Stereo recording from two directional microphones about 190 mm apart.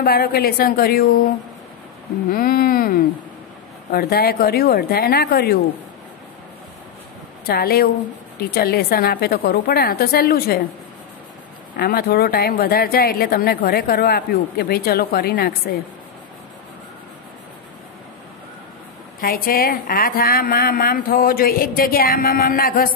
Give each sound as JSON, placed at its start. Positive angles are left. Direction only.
{"t": 0.0, "sound": "a woman's voice", "side_deg": 50}
{"t": 2.3, "sound": "a woman's voice", "side_deg": 50}
{"t": 7.4, "sound": "a woman's voice", "side_deg": 55}
{"t": 11.7, "sound": "a woman's voice", "side_deg": 50}
{"t": 19.1, "sound": "a woman's voice", "side_deg": 50}